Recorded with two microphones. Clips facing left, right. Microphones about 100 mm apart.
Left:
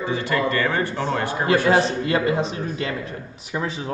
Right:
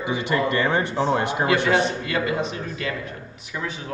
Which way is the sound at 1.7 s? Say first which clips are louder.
Left 3 dB; 35° left (ahead or behind).